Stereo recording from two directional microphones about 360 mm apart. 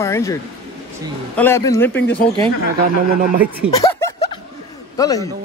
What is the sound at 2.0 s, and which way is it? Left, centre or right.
Speech, left.